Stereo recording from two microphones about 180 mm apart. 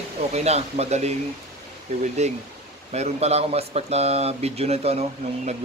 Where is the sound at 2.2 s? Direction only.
40° right (ahead or behind).